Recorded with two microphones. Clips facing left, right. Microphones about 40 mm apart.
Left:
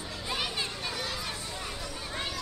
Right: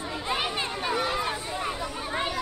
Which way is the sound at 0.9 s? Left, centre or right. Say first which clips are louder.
Right 9 dB; right.